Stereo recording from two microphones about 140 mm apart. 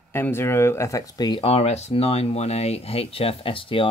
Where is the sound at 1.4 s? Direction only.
50° left (ahead or behind).